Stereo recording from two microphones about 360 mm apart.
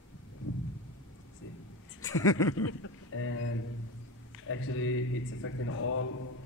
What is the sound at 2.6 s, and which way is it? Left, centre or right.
Speech, left.